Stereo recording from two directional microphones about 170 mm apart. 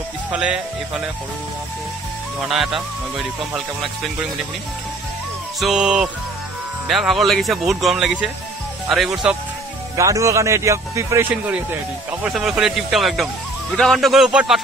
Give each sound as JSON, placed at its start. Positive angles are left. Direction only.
{"t": 0.3, "sound": "speech", "side_deg": -5}
{"t": 2.4, "sound": "speech", "side_deg": 0}
{"t": 5.6, "sound": "speech", "side_deg": -5}
{"t": 9.9, "sound": "speech", "side_deg": -20}
{"t": 12.3, "sound": "speech", "side_deg": -5}